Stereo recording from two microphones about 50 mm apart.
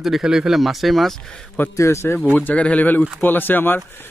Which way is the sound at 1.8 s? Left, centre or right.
Left.